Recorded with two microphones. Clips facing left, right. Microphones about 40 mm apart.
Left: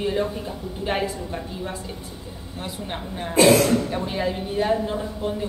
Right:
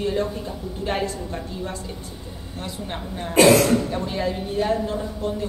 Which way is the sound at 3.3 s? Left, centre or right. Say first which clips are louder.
Right 1 dB; right.